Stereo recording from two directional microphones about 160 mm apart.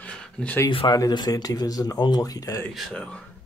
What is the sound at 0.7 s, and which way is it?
Speech, 30° left (ahead or behind).